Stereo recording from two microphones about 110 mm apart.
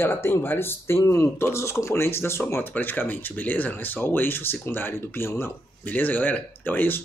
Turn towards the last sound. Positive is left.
turn(degrees=20)  # may be behind; listen again after turning